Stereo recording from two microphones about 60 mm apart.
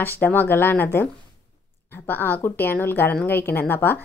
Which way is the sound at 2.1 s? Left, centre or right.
Left.